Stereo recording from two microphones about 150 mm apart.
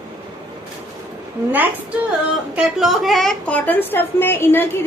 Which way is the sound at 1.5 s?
10° right (ahead or behind).